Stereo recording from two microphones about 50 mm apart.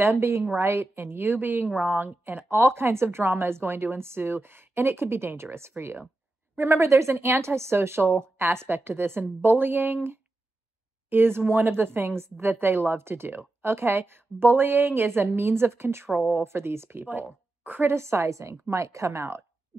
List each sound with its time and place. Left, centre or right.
0.2 s speech: right
0.6 s a woman's voice: right
2.5 s a woman's voice: right
11.1 s a woman's voice: right
17.0 s speech: right
17.9 s a woman's voice: right